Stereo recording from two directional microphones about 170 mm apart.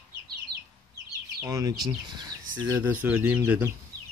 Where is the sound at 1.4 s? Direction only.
20° right (ahead or behind).